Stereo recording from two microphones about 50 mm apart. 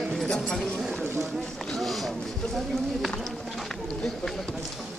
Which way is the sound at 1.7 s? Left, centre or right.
Centre.